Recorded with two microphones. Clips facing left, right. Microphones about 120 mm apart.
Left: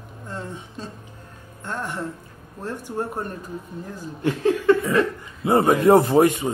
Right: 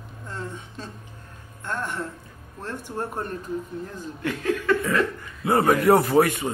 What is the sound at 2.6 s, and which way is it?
Speech, 15° left (ahead or behind).